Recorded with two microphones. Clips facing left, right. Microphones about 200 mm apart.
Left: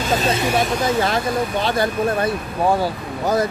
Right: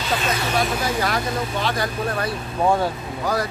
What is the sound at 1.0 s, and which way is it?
Speech, 25° left (ahead or behind).